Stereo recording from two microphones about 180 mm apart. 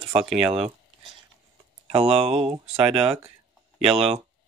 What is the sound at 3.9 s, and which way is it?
Speech, 30° right (ahead or behind).